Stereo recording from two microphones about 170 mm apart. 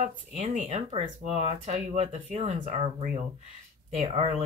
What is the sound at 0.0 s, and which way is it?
Speech, 45° right (ahead or behind).